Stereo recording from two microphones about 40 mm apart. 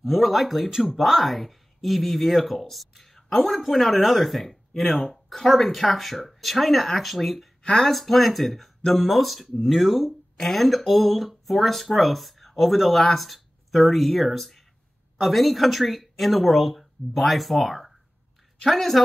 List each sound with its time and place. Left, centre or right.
0.0 s speech: centre
0.7 s speech: centre
0.9 s speech: centre
3.0 s a sound: centre
3.4 s speech: centre
7.6 s speech: centre
7.9 s speech: centre